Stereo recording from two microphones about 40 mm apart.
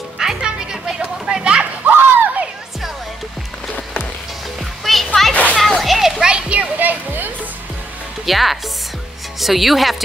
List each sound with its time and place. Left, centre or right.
0.4 s music: centre
1.9 s a sound: right
4.6 s music: centre
5.3 s children playing: left
5.8 s children playing: centre
6.2 s music: right
6.8 s music: right
8.3 s speech: centre